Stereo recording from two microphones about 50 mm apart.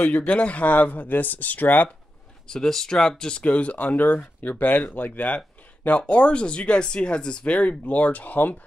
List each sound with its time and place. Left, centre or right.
0.0 s speech: left
2.5 s speech: centre; by 5.4 s left
5.9 s speech: left